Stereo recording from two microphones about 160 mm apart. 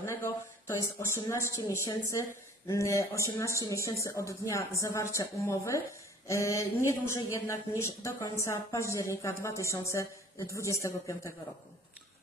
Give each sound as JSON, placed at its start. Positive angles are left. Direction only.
{"t": 0.0, "sound": "a woman's voice", "side_deg": 15}